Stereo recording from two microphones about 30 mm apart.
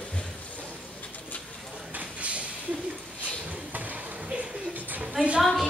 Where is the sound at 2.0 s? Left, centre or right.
Right.